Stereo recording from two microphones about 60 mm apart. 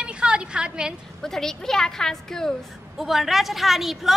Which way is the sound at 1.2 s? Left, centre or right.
Centre.